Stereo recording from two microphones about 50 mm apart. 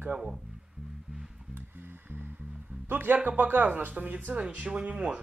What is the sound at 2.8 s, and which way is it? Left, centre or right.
Speech, right.